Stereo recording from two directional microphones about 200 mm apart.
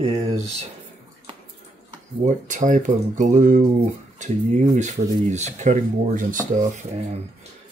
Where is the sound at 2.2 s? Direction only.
40° right (ahead or behind).